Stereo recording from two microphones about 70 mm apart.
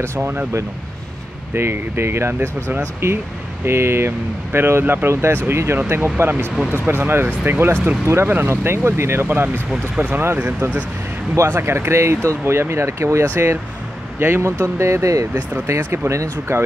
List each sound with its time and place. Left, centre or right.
0.0 s speech: right
1.5 s speech: right
8.1 s speech: right
9.7 s speech: centre
10.2 s speech: right